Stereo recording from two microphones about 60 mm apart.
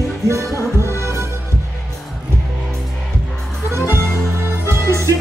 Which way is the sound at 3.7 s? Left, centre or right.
Right.